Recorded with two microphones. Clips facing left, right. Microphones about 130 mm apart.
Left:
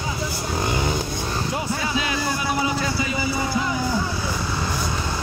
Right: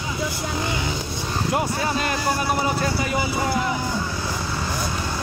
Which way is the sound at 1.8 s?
50° right (ahead or behind).